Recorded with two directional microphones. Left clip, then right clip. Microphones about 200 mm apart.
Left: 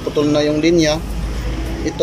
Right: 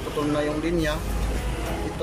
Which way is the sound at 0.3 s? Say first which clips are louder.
Left 11 dB; 20° left (ahead or behind).